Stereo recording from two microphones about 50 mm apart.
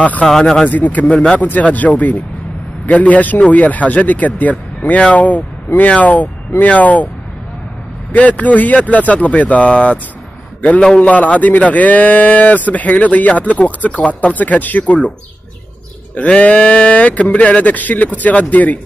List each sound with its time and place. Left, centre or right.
0.3 s speech: centre
0.7 s speech: left
8.1 s speech: left
11.0 s speech: left
16.3 s speech: left